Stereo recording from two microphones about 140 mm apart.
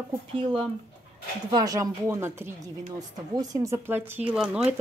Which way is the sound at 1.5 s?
25° right (ahead or behind).